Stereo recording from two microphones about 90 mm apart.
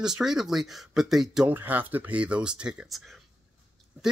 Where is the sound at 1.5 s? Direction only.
20° right (ahead or behind).